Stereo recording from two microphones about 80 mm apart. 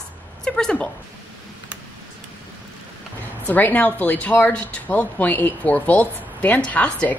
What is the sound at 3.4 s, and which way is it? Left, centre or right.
Speech, left.